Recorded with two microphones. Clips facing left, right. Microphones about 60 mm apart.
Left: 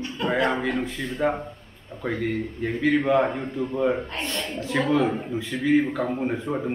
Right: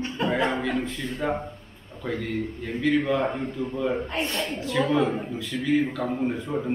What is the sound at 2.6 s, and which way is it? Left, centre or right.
A man's voice, left.